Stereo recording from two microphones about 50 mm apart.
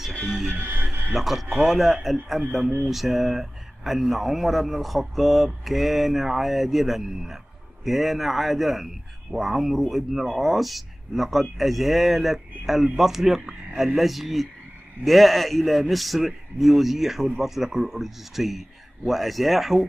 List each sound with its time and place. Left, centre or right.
0.6 s speech: right
1.1 s speech: centre